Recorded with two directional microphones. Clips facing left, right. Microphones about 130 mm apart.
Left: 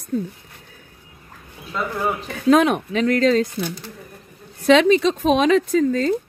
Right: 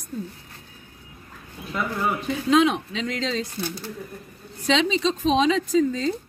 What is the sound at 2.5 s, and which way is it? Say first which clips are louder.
A woman's voice: left 3 dB; 55° left (ahead or behind).